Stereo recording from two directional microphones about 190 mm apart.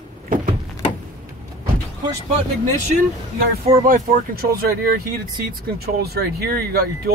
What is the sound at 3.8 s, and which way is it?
Speech, 50° right (ahead or behind).